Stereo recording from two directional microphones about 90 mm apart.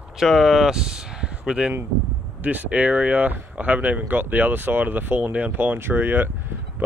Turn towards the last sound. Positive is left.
turn(degrees=-25)  # may be behind; listen again after turning